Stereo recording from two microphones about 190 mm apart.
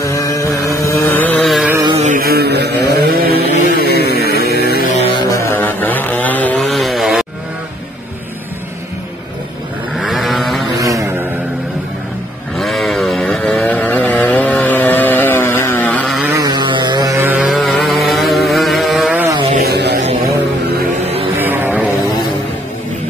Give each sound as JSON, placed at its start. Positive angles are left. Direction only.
{"t": 0.0, "sound": "a sound", "side_deg": 15}
{"t": 0.7, "sound": "vehicle", "side_deg": 15}
{"t": 2.0, "sound": "mantra", "side_deg": -45}
{"t": 3.6, "sound": "a sound", "side_deg": 55}
{"t": 4.9, "sound": "music", "side_deg": 30}
{"t": 5.3, "sound": "chainsaw", "side_deg": 15}
{"t": 9.9, "sound": "vehicle", "side_deg": 0}
{"t": 10.8, "sound": "vehicle", "side_deg": -15}
{"t": 12.5, "sound": "vehicle", "side_deg": 0}
{"t": 16.3, "sound": "vehicle", "side_deg": -20}
{"t": 19.5, "sound": "vehicle", "side_deg": -55}
{"t": 21.4, "sound": "vehicle", "side_deg": -10}